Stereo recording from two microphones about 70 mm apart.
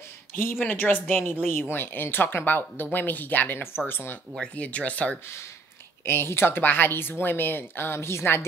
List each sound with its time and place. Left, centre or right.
0.4 s speech: left
4.4 s speech: centre
6.0 s speech: left